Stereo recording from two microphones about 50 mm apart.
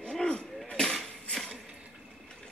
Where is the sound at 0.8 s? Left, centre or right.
Centre.